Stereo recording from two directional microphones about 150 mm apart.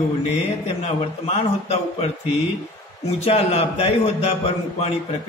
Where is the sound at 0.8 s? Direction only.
45° left (ahead or behind).